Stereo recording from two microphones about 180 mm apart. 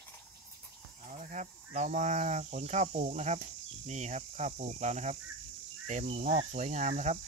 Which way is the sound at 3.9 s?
40° right (ahead or behind).